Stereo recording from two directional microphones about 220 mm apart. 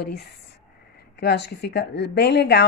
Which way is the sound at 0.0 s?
45° left (ahead or behind).